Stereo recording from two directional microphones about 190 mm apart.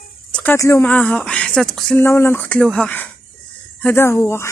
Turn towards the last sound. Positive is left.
turn(degrees=15)  # may be behind; listen again after turning